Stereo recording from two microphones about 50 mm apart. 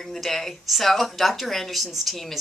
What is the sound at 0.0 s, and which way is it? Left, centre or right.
Speech, centre.